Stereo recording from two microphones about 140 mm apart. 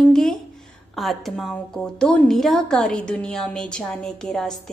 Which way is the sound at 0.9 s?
Centre (ahead or behind).